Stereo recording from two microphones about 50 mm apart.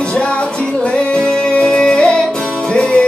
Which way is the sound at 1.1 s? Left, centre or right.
Centre.